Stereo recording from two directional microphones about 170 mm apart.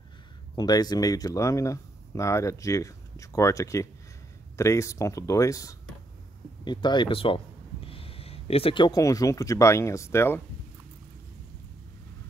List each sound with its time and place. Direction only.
0.6 s speech: 25° left (ahead or behind)